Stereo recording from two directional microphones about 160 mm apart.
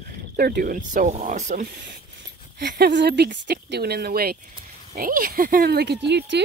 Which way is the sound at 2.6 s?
90° right.